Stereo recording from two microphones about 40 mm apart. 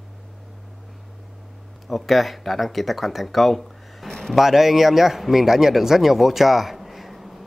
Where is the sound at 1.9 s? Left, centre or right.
Centre.